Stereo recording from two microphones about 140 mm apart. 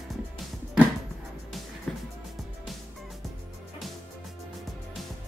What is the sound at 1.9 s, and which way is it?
Music, 5° left (ahead or behind).